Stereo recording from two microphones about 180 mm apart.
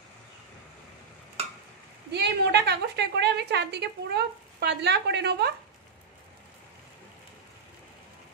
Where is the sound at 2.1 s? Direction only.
70° right (ahead or behind).